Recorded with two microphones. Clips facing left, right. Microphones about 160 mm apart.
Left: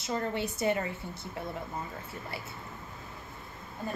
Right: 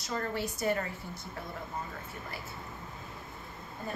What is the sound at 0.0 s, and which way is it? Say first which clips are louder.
A woman's voice: left 2 dB; 20° left (ahead or behind).